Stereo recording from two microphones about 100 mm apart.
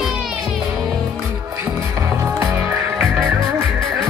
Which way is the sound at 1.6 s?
25° right (ahead or behind).